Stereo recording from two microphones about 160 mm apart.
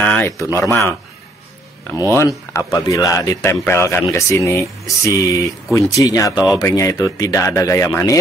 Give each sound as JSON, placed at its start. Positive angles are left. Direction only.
{"t": 0.0, "sound": "speech", "side_deg": 10}
{"t": 2.1, "sound": "a man's voice", "side_deg": 20}